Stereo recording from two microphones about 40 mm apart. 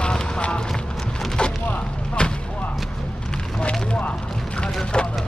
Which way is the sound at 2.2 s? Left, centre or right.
Left.